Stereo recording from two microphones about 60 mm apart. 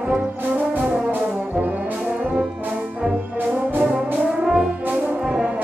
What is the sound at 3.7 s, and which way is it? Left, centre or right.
Brass instrument, right.